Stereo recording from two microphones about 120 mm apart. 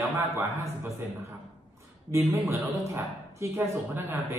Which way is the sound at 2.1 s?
20° right (ahead or behind).